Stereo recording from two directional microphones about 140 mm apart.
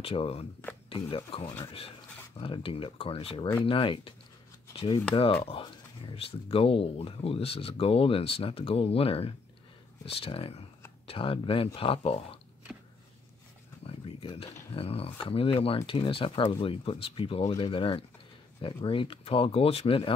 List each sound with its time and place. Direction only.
0.0 s speech: 40° left (ahead or behind)
13.8 s a sound: 40° left (ahead or behind)
14.7 s speech: 45° left (ahead or behind)